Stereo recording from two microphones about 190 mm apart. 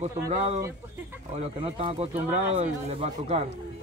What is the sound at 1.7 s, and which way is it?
Speech, 30° right (ahead or behind).